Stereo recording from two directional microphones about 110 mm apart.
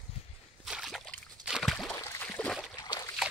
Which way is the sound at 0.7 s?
Centre (ahead or behind).